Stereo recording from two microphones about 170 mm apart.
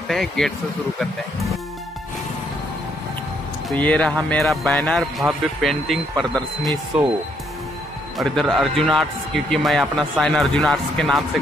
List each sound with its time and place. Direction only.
0.1 s a man's voice: centre (ahead or behind)
3.6 s a man's voice: 10° left (ahead or behind)
8.2 s a man's voice: centre (ahead or behind)